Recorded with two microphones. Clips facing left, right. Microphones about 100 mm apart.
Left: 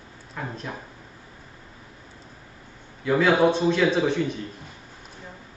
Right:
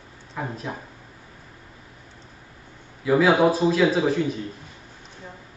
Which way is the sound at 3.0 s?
5° right (ahead or behind).